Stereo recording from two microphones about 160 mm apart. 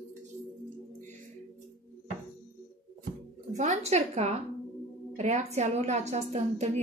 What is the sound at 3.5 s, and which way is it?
A woman's voice, 50° right (ahead or behind).